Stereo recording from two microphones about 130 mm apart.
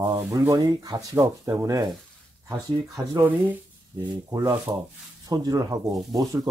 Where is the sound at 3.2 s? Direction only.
15° right (ahead or behind).